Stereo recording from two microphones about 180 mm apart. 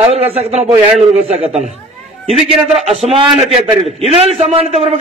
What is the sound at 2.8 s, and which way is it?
A man's voice, 35° right (ahead or behind).